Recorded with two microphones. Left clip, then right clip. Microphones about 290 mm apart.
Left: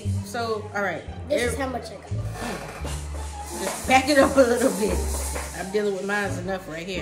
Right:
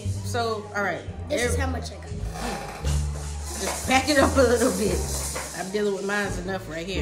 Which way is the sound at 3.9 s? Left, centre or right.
Centre.